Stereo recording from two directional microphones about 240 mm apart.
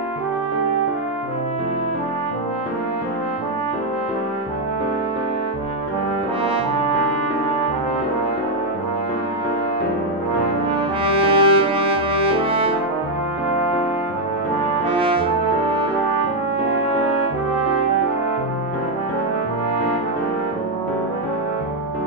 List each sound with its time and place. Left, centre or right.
11.3 s music: right
15.0 s french horn: right